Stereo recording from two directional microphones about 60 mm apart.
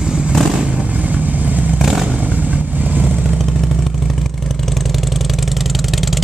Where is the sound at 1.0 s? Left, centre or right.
Right.